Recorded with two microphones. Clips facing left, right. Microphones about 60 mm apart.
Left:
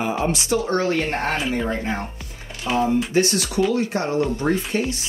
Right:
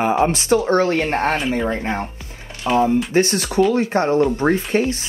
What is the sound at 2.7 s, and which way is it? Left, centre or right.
Speech, centre.